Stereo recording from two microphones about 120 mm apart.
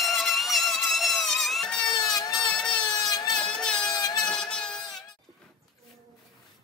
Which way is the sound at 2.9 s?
35° left (ahead or behind).